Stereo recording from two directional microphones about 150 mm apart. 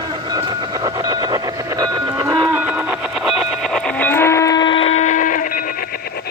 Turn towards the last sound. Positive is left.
turn(degrees=90)